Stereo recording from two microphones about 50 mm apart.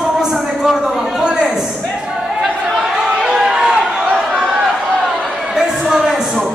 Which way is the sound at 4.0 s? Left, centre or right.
Centre.